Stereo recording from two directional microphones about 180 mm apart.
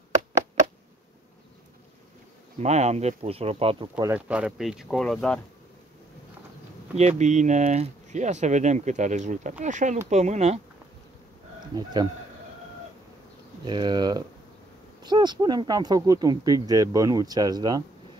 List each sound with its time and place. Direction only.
2.6 s speech: 40° right (ahead or behind)
4.0 s speech: 10° right (ahead or behind)
7.0 s speech: 40° right (ahead or behind)
11.7 s speech: 25° right (ahead or behind)
13.7 s speech: 25° right (ahead or behind)